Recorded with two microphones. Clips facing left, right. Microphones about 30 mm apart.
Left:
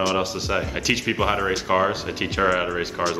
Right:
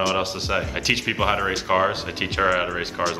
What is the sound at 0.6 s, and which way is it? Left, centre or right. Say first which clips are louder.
Speech: right 1 dB; centre.